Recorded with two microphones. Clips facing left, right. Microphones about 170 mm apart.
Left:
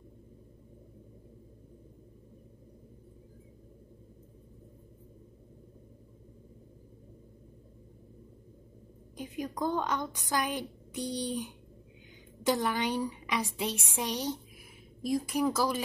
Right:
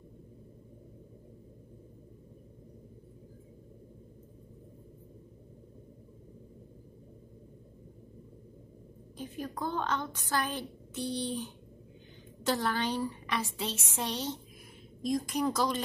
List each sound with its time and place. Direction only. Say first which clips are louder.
9.1 s a woman's voice: left 2 dB; 15° left (ahead or behind)